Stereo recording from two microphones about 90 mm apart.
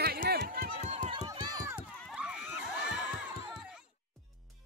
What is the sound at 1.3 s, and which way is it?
Run, 45° right (ahead or behind).